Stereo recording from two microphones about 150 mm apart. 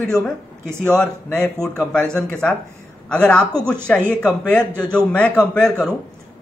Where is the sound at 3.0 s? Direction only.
10° left (ahead or behind).